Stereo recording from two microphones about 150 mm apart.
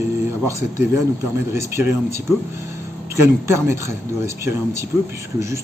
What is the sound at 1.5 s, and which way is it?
Speech, 20° right (ahead or behind).